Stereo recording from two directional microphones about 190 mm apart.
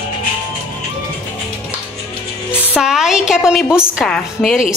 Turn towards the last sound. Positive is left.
turn(degrees=0)  # may be behind; listen again after turning